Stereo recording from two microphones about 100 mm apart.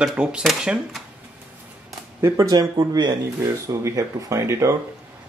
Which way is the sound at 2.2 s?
30° right (ahead or behind).